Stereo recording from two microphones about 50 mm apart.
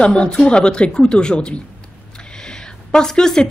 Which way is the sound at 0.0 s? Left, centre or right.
Left.